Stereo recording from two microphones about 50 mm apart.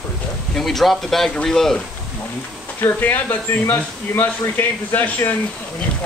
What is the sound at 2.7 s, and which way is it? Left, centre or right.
Speech, left.